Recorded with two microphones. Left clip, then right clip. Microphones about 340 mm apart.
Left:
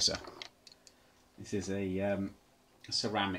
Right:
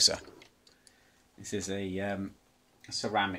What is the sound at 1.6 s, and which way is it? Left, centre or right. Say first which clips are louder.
Speech: left 1 dB; right.